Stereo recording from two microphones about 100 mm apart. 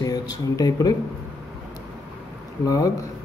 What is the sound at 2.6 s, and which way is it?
Speech, 35° left (ahead or behind).